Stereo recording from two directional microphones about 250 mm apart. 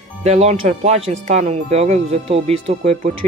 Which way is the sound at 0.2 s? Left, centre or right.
Right.